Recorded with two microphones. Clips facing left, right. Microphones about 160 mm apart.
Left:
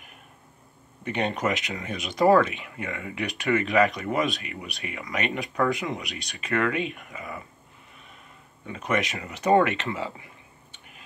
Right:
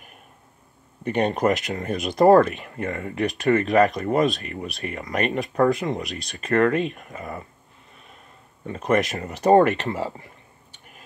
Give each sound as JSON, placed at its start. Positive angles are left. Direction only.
{"t": 1.0, "sound": "speech", "side_deg": -40}
{"t": 8.6, "sound": "speech", "side_deg": -40}